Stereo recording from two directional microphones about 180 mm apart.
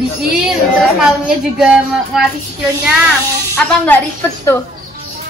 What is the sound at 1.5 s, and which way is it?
A woman's voice, centre (ahead or behind).